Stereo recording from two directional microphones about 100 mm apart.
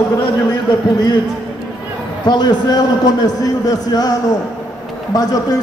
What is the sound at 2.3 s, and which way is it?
A man's voice, 45° left (ahead or behind).